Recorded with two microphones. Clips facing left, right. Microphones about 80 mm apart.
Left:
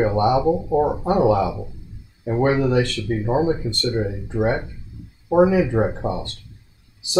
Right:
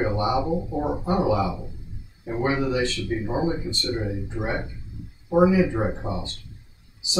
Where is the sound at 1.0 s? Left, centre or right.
Left.